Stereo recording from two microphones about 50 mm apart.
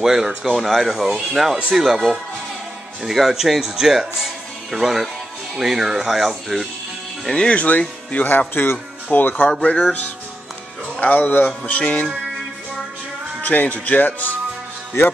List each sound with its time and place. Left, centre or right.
0.0 s speech: centre
7.2 s speech: centre
7.5 s speech: left
11.0 s speech: left
11.6 s speech: left
13.5 s speech: left